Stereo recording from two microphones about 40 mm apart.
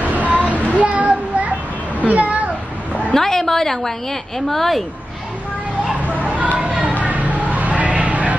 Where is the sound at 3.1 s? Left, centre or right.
Centre.